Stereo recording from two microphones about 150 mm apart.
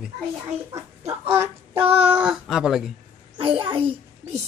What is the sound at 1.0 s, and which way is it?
Speech, 40° right (ahead or behind).